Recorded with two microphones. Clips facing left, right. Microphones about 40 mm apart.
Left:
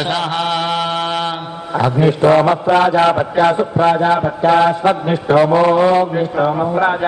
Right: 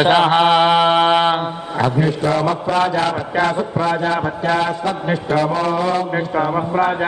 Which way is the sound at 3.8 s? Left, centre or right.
Left.